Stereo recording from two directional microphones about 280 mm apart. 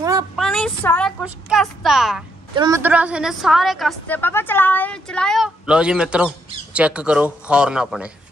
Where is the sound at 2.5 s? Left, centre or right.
Centre.